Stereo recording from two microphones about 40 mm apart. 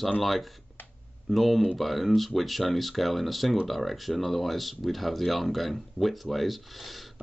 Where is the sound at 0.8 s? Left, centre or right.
Left.